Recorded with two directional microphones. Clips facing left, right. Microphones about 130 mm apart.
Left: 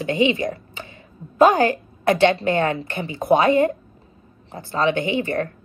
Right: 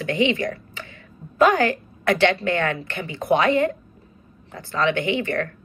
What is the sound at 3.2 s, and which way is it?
Speech, 50° left (ahead or behind).